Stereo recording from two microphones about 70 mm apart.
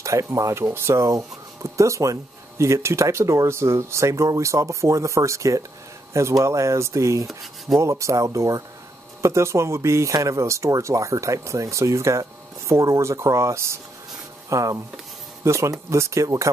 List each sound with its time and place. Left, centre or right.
0.0 s speech: right
7.2 s rub: centre
7.8 s speech: right